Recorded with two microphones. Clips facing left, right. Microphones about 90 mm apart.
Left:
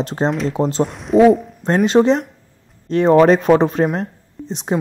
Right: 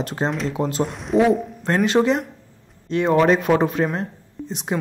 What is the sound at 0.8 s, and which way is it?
Speech, centre (ahead or behind).